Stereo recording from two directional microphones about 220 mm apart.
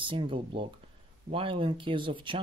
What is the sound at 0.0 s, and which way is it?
Speech, 25° right (ahead or behind).